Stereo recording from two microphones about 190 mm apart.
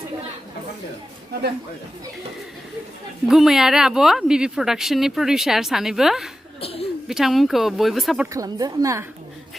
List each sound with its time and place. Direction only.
3.3 s speech: centre (ahead or behind)
6.6 s a woman's voice: 30° left (ahead or behind)
7.1 s speech: centre (ahead or behind)
8.3 s a woman's voice: 20° right (ahead or behind)